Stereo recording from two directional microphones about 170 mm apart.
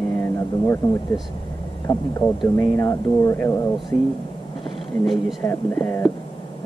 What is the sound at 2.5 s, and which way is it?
Speech, 15° left (ahead or behind).